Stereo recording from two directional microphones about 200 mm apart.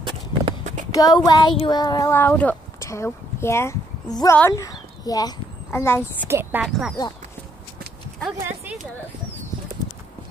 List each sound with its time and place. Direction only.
0.0 s horse: 25° right (ahead or behind)
0.9 s speech: 20° left (ahead or behind)
6.2 s a woman's voice: 10° right (ahead or behind)
8.4 s clip-clop: 10° right (ahead or behind)